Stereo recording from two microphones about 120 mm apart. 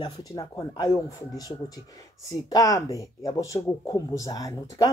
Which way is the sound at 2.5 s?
30° left (ahead or behind).